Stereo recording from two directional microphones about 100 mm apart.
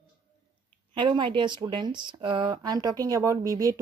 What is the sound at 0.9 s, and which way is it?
A woman's voice, 55° right (ahead or behind).